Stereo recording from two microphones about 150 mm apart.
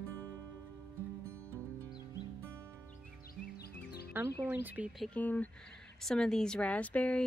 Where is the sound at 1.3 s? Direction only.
15° right (ahead or behind).